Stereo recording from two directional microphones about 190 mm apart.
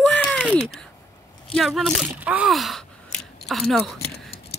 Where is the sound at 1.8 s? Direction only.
Centre (ahead or behind).